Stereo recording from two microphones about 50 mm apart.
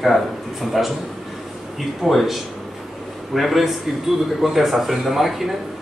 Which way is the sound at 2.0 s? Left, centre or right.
Centre.